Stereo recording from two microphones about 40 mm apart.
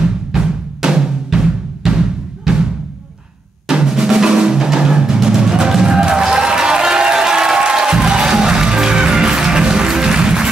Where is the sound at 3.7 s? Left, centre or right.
Centre.